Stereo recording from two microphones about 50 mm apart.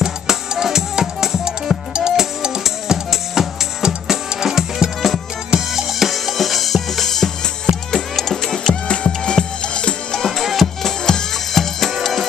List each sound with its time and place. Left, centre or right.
0.0 s music: centre
8.8 s music: centre
10.2 s music: centre